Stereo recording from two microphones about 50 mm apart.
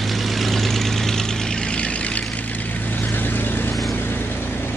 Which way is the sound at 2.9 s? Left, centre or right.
Left.